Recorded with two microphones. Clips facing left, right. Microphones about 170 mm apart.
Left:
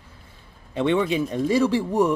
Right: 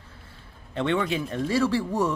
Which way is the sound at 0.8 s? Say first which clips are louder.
Left 4 dB; 15° left (ahead or behind).